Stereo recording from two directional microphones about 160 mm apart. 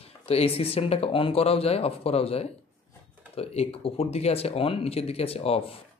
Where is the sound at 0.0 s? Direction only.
40° left (ahead or behind).